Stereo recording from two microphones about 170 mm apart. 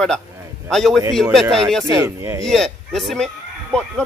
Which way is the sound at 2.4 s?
Centre (ahead or behind).